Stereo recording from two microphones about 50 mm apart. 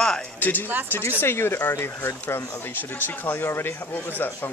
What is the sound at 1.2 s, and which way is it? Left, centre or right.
Speech, left.